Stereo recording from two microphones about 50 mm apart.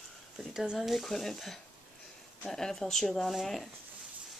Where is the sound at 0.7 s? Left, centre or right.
Centre.